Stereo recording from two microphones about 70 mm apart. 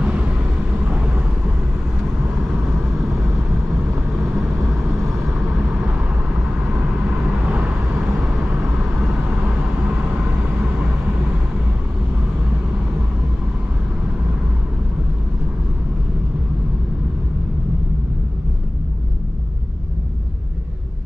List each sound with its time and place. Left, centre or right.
0.0 s vehicle: centre
7.1 s vehicle: centre